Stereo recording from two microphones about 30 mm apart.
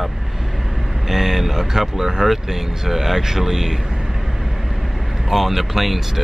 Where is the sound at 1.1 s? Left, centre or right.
Centre.